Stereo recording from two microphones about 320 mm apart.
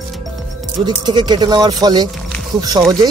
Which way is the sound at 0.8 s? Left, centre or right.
Centre.